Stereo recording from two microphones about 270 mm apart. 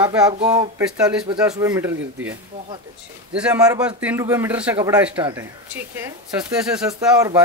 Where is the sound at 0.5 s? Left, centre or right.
Centre.